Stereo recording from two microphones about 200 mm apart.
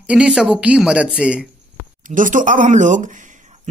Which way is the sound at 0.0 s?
5° right (ahead or behind).